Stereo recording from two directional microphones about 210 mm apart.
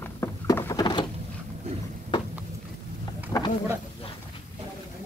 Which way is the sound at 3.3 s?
15° left (ahead or behind).